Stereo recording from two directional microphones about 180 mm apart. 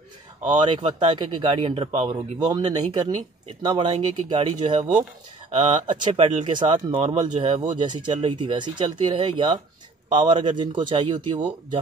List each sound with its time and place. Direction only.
0.5 s speech: 25° right (ahead or behind)
1.7 s speech: 35° right (ahead or behind)
2.0 s speech: 25° right (ahead or behind)